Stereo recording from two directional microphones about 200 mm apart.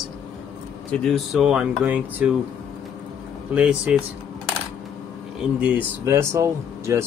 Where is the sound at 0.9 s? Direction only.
Centre (ahead or behind).